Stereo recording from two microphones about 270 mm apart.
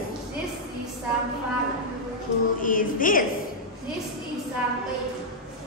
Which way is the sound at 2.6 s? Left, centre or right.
Left.